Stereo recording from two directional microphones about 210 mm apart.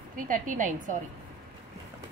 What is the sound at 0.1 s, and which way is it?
Speech, 40° right (ahead or behind).